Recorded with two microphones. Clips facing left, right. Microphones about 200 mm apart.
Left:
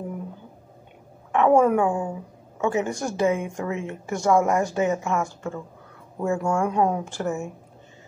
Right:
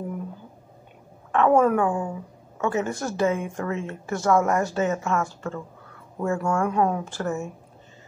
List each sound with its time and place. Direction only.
1.3 s a woman's voice: 15° left (ahead or behind)